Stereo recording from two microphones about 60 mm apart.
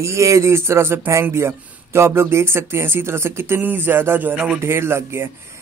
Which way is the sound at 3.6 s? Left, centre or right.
Right.